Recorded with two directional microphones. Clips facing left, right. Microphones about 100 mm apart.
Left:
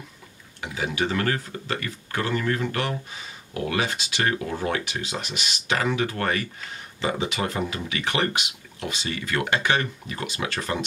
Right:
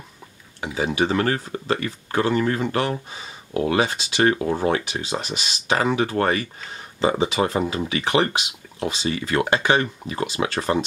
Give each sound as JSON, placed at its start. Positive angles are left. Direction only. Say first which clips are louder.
{"t": 0.7, "sound": "speech", "louder": "right 5 dB", "side_deg": -30}